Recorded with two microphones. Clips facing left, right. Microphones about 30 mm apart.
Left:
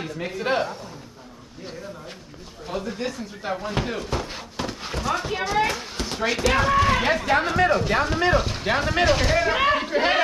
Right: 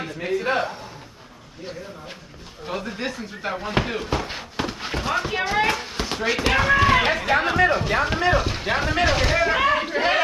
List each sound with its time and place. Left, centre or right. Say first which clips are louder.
0.0 s a man's voice: right 3 dB; centre
2.6 s speech: even; right
5.9 s a sound: right 2 dB; centre
6.5 s speech: right 3 dB; centre
7.0 s speech: right 1 dB; right
8.3 s speech: even; centre
9.0 s a sound: even; centre